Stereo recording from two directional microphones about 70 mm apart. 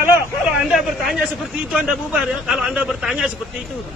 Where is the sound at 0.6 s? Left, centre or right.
Centre.